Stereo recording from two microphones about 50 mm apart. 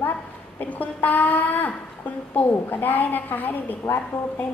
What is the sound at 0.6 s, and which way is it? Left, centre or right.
A woman's voice, left.